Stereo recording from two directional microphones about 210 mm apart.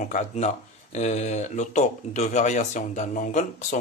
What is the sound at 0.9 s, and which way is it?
Speech, 30° left (ahead or behind).